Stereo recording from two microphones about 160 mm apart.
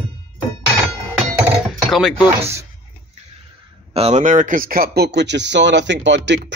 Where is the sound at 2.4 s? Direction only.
15° right (ahead or behind).